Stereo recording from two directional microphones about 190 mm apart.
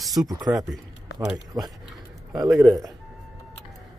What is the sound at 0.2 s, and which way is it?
Speech, 20° right (ahead or behind).